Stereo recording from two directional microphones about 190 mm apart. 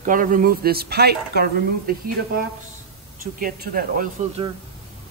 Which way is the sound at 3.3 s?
45° right (ahead or behind).